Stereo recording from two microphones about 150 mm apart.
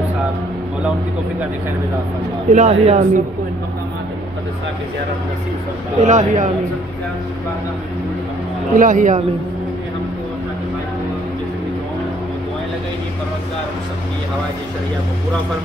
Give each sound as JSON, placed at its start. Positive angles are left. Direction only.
{"t": 2.5, "sound": "speech", "side_deg": -45}
{"t": 5.9, "sound": "speech", "side_deg": -55}
{"t": 8.7, "sound": "speech", "side_deg": -60}